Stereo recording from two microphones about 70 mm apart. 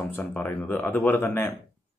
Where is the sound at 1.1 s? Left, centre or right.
Left.